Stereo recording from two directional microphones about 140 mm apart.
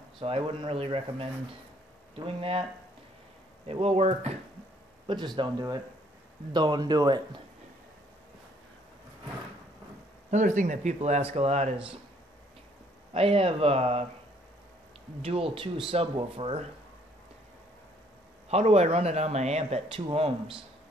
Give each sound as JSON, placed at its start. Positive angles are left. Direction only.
{"t": 0.2, "sound": "speech", "side_deg": -40}
{"t": 3.6, "sound": "speech", "side_deg": -45}
{"t": 5.0, "sound": "speech", "side_deg": -35}
{"t": 10.3, "sound": "speech", "side_deg": -60}
{"t": 13.1, "sound": "speech", "side_deg": -45}
{"t": 15.2, "sound": "speech", "side_deg": -40}
{"t": 18.5, "sound": "speech", "side_deg": -50}